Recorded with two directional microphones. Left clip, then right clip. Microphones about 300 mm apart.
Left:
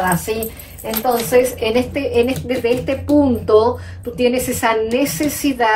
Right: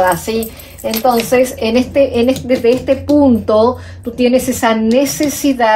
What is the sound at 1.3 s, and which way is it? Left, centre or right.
Speech, right.